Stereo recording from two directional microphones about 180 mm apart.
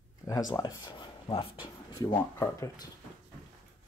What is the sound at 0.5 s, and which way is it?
Speech, 20° left (ahead or behind).